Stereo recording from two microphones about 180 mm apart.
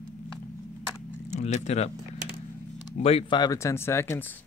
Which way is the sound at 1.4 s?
40° left (ahead or behind).